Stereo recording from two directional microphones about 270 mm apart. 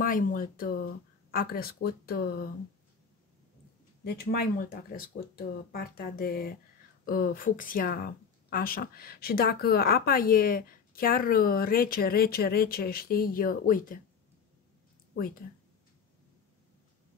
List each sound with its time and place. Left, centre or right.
0.0 s a woman's voice: left
4.0 s a woman's voice: left